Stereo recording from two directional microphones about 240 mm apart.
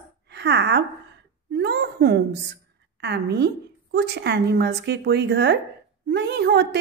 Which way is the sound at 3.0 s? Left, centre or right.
Right.